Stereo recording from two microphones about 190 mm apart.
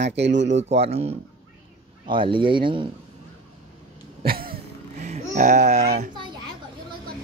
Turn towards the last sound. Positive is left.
turn(degrees=-35)  # may be behind; listen again after turning